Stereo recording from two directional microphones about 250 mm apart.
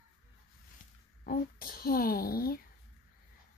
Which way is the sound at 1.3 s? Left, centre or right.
Left.